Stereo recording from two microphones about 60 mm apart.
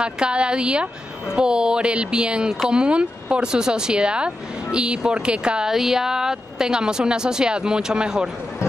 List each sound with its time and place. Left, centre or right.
0.0 s speech: centre